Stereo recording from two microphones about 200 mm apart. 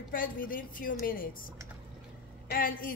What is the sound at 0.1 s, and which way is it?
A woman's voice, 45° left (ahead or behind).